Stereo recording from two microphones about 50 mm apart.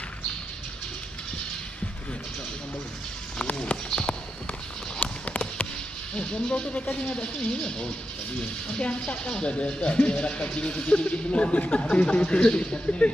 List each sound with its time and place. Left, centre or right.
3.3 s clip-clop: left
6.1 s speech: centre